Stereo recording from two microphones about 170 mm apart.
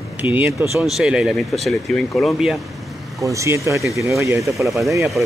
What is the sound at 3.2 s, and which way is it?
Speech, 20° right (ahead or behind).